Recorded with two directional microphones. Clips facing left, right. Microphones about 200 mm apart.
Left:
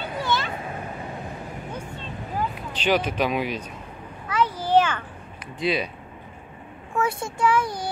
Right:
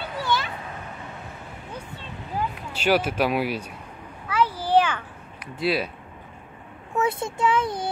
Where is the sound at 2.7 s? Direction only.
10° right (ahead or behind).